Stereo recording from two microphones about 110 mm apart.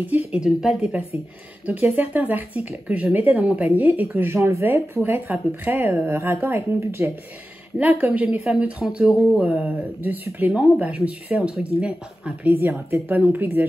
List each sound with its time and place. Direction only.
0.0 s speech: 10° right (ahead or behind)